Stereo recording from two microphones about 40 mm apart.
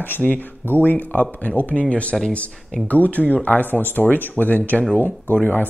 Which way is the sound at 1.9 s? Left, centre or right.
Left.